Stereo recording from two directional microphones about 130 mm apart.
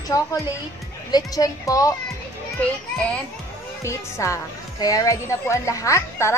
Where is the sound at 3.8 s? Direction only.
25° left (ahead or behind).